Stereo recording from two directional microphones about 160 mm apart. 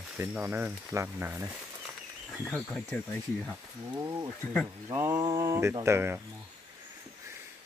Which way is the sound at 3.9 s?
25° right (ahead or behind).